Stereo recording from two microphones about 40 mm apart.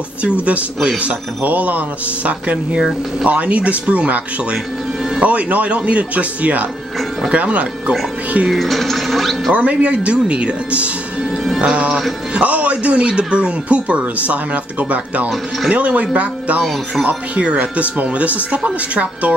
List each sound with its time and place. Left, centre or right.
0.2 s speech: right
1.4 s speech: right
8.5 s a sound: centre
9.5 s speech: right
11.4 s music: centre
11.7 s speech: right
17.6 s speech: right